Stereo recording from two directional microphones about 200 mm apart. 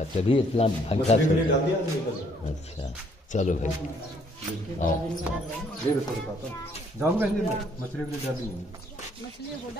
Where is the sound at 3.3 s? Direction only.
40° left (ahead or behind).